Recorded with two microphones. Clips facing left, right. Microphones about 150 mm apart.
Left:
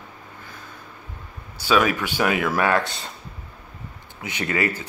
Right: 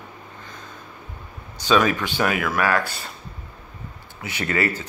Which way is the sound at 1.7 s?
10° left (ahead or behind).